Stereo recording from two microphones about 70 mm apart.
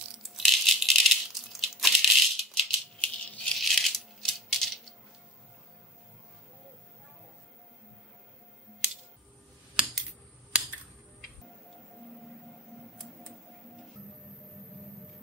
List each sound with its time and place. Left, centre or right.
0.1 s rattle: centre
3.0 s music: centre
3.5 s rattle: centre
12.9 s a sound: centre